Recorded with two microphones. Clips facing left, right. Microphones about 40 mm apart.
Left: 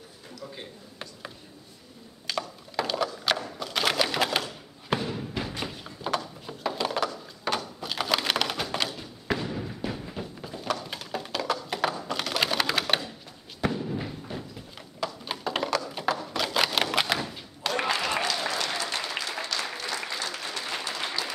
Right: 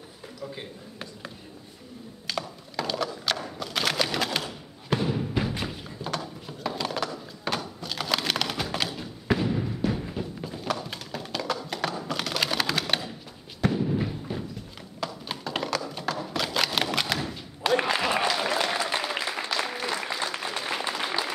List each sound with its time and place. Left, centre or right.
0.6 s a sound: centre
3.3 s typewriter: centre
5.0 s music: centre
5.6 s a sound: centre
10.1 s tap: centre
11.9 s music: centre
13.6 s fireworks: centre
15.0 s a sound: centre
17.9 s applause: centre